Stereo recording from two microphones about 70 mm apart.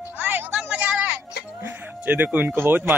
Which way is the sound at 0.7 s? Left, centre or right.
Centre.